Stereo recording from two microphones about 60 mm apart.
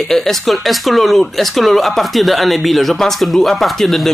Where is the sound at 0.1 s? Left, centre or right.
Centre.